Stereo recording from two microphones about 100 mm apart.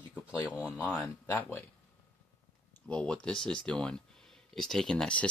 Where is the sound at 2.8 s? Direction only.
10° left (ahead or behind).